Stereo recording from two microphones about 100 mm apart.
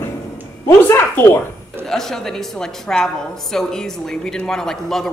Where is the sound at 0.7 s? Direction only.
25° left (ahead or behind).